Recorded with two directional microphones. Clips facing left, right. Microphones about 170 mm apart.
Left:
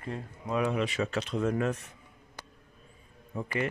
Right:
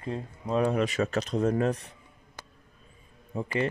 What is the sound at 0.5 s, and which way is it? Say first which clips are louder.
Speech: right 3 dB; 40° right (ahead or behind).